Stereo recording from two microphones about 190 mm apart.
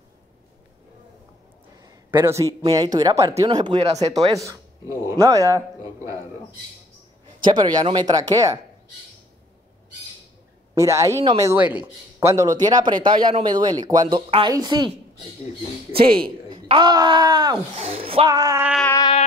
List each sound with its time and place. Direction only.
2.0 s speech: 10° right (ahead or behind)
7.4 s speech: 25° right (ahead or behind)
10.7 s speech: 15° right (ahead or behind)
15.9 s speech: 30° right (ahead or behind)
17.7 s speech: 30° right (ahead or behind)